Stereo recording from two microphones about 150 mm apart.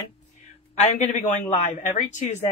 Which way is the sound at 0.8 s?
50° left (ahead or behind).